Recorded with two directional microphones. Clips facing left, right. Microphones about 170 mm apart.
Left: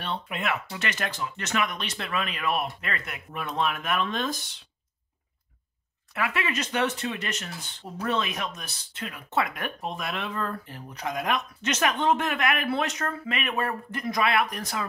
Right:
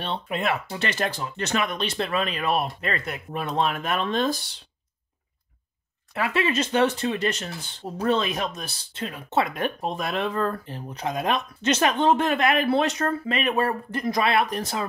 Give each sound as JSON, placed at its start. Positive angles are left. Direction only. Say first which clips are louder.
{"t": 0.0, "sound": "speech", "louder": "right 4 dB", "side_deg": -30}
{"t": 6.1, "sound": "speech", "louder": "right 5 dB", "side_deg": -30}
{"t": 10.9, "sound": "speech", "louder": "right 3 dB", "side_deg": -25}